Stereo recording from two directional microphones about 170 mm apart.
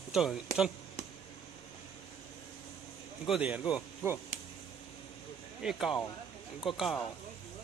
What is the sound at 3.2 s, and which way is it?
Speech, 5° right (ahead or behind).